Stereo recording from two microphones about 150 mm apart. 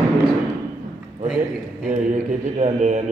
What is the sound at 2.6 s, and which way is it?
Speech, 50° right (ahead or behind).